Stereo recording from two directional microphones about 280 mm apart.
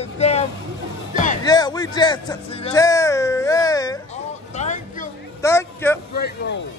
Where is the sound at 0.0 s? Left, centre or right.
Left.